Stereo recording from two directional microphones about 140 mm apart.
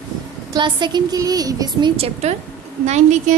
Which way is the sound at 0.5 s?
35° right (ahead or behind).